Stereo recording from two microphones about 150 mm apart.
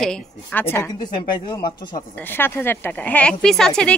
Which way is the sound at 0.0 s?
5° left (ahead or behind).